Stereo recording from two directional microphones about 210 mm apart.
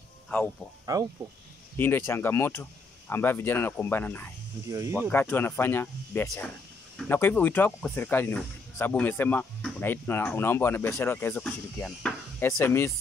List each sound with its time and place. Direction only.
0.9 s speech: 15° right (ahead or behind)
1.8 s speech: 10° left (ahead or behind)
4.6 s speech: 15° right (ahead or behind)
5.1 s speech: 10° left (ahead or behind)